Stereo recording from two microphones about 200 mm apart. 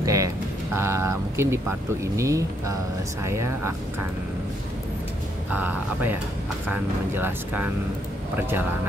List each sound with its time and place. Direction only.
0.0 s a sound: 15° right (ahead or behind)
0.7 s speech: 15° right (ahead or behind)
5.5 s speech: 10° right (ahead or behind)